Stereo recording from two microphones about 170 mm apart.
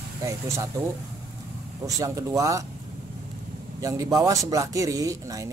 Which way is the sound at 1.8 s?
20° right (ahead or behind).